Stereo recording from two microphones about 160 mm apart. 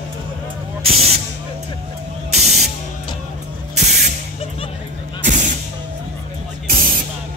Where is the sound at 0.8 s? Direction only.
40° right (ahead or behind).